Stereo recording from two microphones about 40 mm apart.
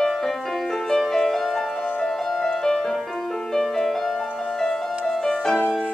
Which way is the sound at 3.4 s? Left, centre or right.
Centre.